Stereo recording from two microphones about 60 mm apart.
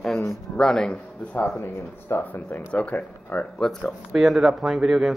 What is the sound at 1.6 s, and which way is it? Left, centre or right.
Speech, left.